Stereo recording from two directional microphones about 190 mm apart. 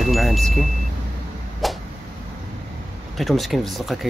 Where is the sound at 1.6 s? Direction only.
Centre (ahead or behind).